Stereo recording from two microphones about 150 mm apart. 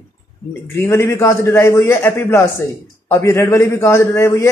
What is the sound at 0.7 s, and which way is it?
A man's voice, 15° left (ahead or behind).